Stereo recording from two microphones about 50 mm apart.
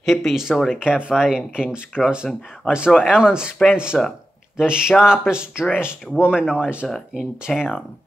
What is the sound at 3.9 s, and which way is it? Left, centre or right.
Speech, centre.